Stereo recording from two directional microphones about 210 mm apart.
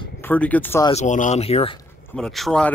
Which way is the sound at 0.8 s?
35° left (ahead or behind).